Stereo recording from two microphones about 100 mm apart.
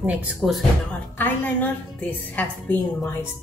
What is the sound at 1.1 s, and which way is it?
A woman's voice, 15° left (ahead or behind).